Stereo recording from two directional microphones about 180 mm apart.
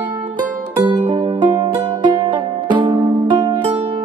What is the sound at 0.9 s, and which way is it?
Music, 25° right (ahead or behind).